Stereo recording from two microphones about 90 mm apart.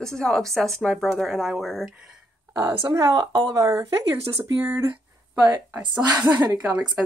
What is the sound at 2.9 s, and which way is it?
A woman's voice, 40° right (ahead or behind).